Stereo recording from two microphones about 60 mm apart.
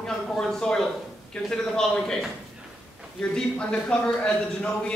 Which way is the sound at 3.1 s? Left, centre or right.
Centre.